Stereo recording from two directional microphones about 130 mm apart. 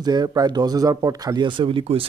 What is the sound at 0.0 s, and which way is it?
Speech, 30° right (ahead or behind).